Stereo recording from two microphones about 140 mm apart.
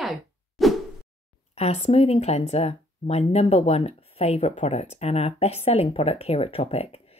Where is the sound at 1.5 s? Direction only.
50° left (ahead or behind).